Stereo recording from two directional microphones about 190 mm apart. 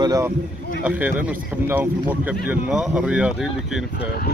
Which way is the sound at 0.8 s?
10° right (ahead or behind).